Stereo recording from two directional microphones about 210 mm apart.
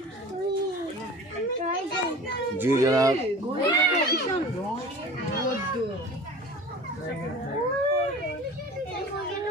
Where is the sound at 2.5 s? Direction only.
10° right (ahead or behind).